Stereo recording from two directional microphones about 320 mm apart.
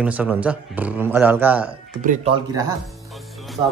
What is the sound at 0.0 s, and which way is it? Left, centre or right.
Speech, centre.